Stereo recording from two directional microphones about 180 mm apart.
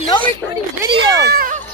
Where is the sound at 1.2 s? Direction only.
60° right (ahead or behind).